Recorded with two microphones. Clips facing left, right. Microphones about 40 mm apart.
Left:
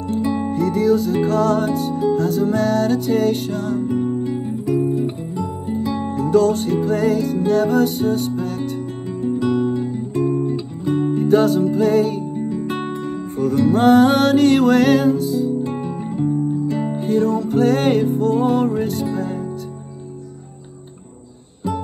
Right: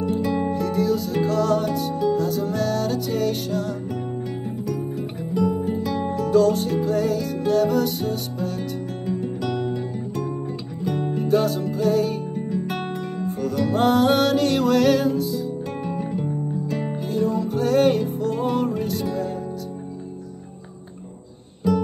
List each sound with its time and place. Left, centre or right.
0.2 s music: left
0.5 s music: left
4.2 s music: left
5.8 s music: left
9.3 s music: left
10.8 s music: left
12.4 s music: left
13.2 s music: left
16.2 s music: centre
16.9 s music: left